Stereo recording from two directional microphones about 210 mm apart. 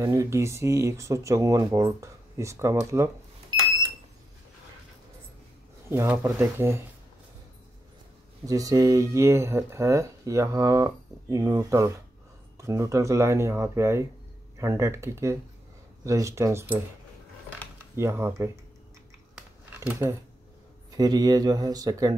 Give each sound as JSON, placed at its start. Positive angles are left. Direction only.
{"t": 0.0, "sound": "speech", "side_deg": -15}
{"t": 5.9, "sound": "speech", "side_deg": -10}
{"t": 8.5, "sound": "speech", "side_deg": -15}
{"t": 17.9, "sound": "speech", "side_deg": -10}
{"t": 19.8, "sound": "speech", "side_deg": -15}